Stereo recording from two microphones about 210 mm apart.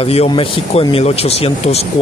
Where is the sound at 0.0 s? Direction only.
30° left (ahead or behind).